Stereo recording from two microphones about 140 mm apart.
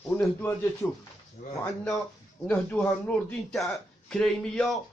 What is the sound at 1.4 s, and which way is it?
Speech, 90° left.